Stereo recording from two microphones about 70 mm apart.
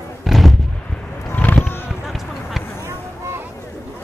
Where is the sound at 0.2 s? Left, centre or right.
Centre.